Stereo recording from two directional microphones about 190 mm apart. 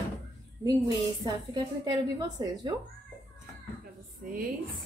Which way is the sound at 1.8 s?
20° right (ahead or behind).